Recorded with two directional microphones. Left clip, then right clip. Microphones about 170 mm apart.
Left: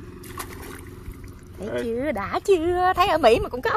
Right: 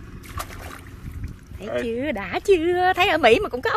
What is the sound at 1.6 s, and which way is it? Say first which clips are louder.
Speech: right 1 dB; 20° right (ahead or behind).